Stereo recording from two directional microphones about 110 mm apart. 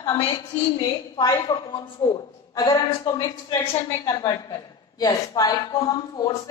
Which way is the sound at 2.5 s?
35° left (ahead or behind).